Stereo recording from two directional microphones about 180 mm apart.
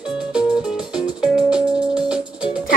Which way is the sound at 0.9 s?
5° right (ahead or behind).